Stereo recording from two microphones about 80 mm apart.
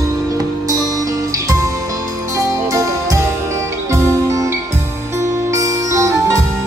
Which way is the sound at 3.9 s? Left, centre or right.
Right.